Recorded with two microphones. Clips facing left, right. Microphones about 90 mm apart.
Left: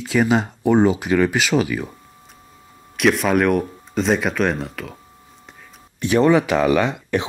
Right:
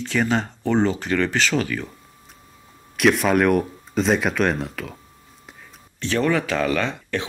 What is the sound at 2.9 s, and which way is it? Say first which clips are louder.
Speech: left 1 dB; centre (ahead or behind).